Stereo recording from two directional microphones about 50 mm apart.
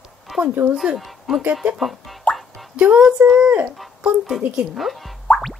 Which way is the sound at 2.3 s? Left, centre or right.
Centre.